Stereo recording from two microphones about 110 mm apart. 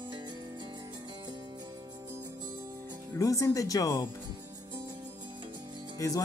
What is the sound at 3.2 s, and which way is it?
Speech, 30° left (ahead or behind).